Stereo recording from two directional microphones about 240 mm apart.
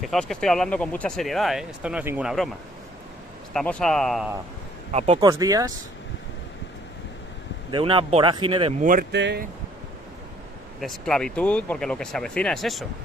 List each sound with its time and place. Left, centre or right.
0.1 s speech: centre
3.5 s speech: centre
4.9 s speech: right
5.3 s speech: centre
7.7 s speech: centre
8.8 s speech: right
10.8 s speech: centre